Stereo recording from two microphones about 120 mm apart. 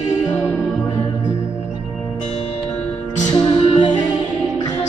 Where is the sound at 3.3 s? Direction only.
35° left (ahead or behind).